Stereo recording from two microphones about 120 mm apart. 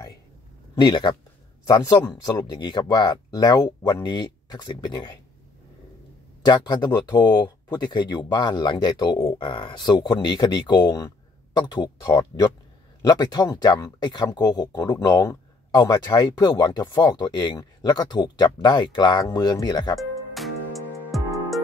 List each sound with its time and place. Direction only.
0.7 s speech: 40° left (ahead or behind)
6.4 s speech: 40° left (ahead or behind)
20.0 s music: centre (ahead or behind)